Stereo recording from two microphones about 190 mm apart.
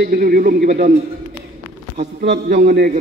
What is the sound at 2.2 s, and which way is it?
Speech, 55° right (ahead or behind).